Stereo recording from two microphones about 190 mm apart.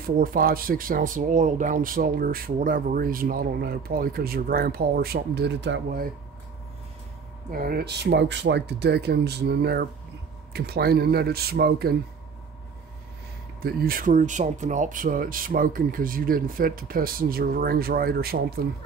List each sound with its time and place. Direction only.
0.0 s speech: 50° right (ahead or behind); by 6.0 s 65° right (ahead or behind)
7.5 s speech: 50° right (ahead or behind)
13.6 s speech: 55° right (ahead or behind)